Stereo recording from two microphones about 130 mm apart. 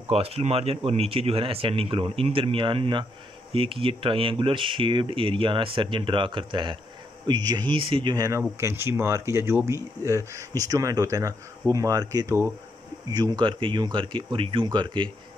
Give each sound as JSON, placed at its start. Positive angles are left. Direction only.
{"t": 0.1, "sound": "speech", "side_deg": -50}
{"t": 8.4, "sound": "speech", "side_deg": -20}
{"t": 13.1, "sound": "speech", "side_deg": -35}